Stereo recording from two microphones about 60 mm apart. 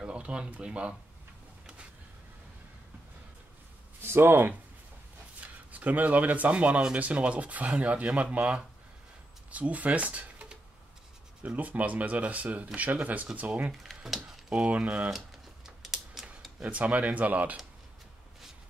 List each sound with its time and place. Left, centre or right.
0.0 s speech: centre
4.0 s speech: right
5.4 s speech: right
14.0 s speech: centre
15.0 s typewriter: centre
16.6 s speech: right